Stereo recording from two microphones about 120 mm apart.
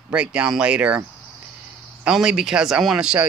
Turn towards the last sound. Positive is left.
turn(degrees=-5)  # may be behind; listen again after turning